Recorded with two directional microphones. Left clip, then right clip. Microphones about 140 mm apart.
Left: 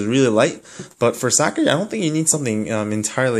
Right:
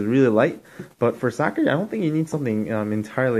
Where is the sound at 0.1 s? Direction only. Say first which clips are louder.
Left 2 dB; 15° left (ahead or behind).